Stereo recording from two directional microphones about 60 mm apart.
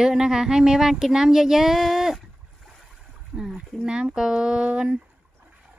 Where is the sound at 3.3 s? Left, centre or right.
Centre.